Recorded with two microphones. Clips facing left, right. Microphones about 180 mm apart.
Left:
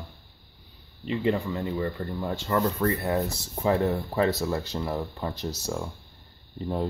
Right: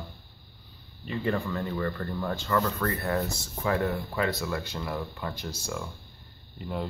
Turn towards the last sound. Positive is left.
turn(degrees=35)  # may be behind; listen again after turning